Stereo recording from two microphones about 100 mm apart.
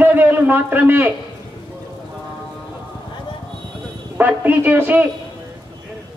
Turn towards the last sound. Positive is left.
turn(degrees=-20)  # may be behind; listen again after turning